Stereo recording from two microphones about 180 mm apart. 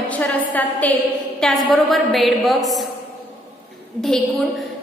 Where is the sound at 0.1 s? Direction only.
10° left (ahead or behind).